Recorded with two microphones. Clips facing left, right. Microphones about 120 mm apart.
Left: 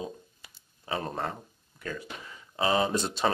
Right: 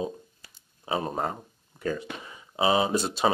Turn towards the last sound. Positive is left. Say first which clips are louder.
# right 2 dB
turn(degrees=-10)  # may be behind; listen again after turning